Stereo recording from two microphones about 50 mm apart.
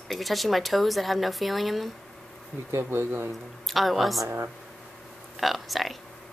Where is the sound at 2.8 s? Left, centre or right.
Right.